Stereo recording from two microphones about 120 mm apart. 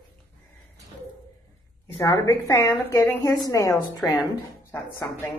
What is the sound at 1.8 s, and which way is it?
A woman's voice, 25° left (ahead or behind).